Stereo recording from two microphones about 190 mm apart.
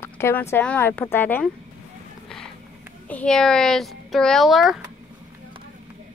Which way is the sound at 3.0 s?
5° left (ahead or behind).